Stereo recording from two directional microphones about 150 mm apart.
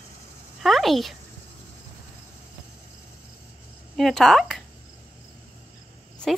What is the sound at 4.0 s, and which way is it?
Speech, centre (ahead or behind).